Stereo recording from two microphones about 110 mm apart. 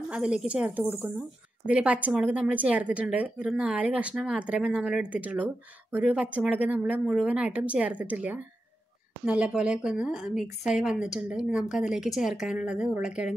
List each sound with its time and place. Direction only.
0.1 s speech: 10° right (ahead or behind)